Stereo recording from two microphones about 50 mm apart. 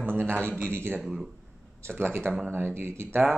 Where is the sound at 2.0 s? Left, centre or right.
Right.